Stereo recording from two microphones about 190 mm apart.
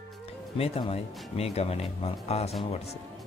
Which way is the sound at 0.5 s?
30° left (ahead or behind).